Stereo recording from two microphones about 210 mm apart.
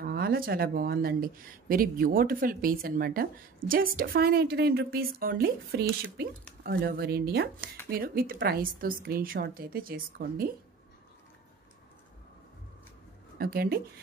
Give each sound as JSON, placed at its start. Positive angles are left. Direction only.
{"t": 0.0, "sound": "speech", "side_deg": -45}
{"t": 13.4, "sound": "speech", "side_deg": -45}